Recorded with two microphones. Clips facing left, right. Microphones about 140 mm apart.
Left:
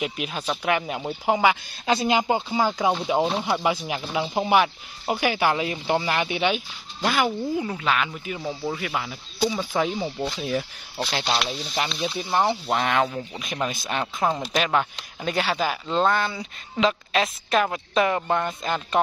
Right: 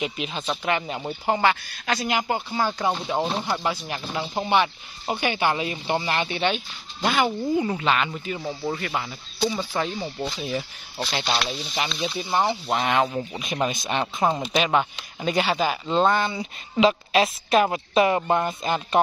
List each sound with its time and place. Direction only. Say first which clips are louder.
0.0 s speech: even; 5° left (ahead or behind)
1.9 s speech: left 4 dB; 25° left (ahead or behind)
2.8 s speech: left 3 dB; 5° left (ahead or behind)
14.5 s speech: right 1 dB; 10° right (ahead or behind)
16.3 s speech: right 2 dB; 20° right (ahead or behind)
16.8 s speech: right 3 dB; 10° right (ahead or behind)